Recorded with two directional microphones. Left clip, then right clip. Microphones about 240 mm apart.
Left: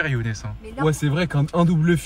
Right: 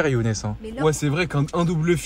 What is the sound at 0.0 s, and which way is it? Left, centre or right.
Speech, centre.